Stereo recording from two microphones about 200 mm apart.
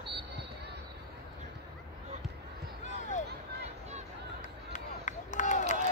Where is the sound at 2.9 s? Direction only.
35° left (ahead or behind).